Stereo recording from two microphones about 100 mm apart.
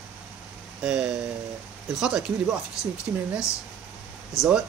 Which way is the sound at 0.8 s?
10° right (ahead or behind).